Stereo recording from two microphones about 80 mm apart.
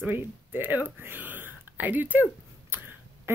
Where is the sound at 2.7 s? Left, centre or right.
Right.